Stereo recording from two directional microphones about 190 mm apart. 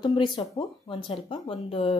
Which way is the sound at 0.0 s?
20° left (ahead or behind).